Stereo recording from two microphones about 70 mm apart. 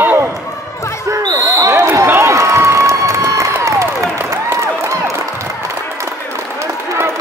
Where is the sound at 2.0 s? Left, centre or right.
Right.